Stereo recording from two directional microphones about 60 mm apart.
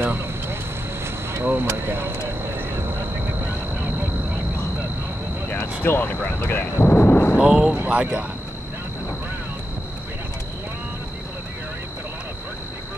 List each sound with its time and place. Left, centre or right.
0.0 s vehicle: right
1.3 s speech: right
1.7 s vehicle: right
5.5 s a sound: left
6.0 s speech: left
6.8 s thunder: left
7.3 s speech: centre